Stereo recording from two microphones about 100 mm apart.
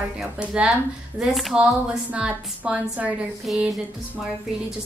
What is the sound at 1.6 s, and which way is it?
A woman's voice, 10° right (ahead or behind).